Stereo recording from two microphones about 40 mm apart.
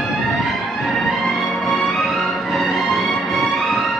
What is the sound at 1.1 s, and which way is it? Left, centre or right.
Music, centre.